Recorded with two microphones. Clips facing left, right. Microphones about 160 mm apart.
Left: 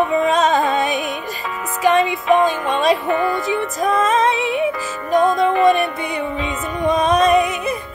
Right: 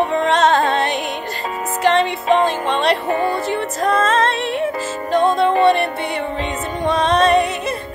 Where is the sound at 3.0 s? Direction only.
35° right (ahead or behind).